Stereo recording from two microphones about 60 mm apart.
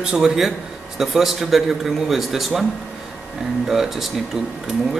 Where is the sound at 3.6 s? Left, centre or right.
Centre.